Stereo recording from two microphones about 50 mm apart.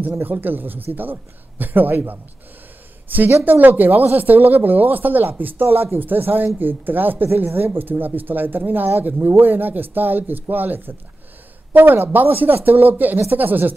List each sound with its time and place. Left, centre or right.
0.0 s speech: right